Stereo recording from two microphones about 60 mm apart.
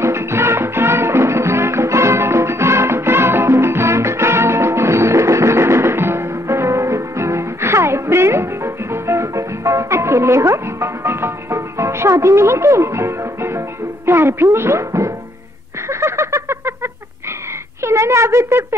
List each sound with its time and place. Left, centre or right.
0.0 s music: right
14.0 s speech: right
14.9 s music: right
15.9 s a sound: right